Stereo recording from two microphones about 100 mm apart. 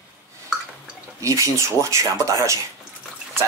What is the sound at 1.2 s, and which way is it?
Speech, 30° right (ahead or behind).